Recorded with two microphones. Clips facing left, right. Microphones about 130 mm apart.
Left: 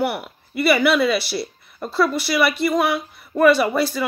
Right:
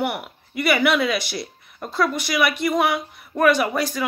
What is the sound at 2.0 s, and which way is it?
Speech, 5° left (ahead or behind).